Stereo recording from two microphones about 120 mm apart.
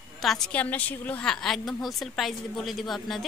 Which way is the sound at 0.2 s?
5° left (ahead or behind).